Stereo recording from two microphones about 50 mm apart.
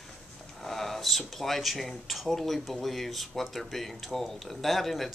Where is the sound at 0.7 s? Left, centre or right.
Centre.